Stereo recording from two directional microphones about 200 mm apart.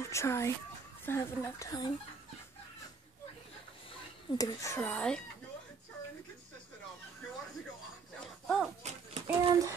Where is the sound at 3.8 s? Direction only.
15° left (ahead or behind).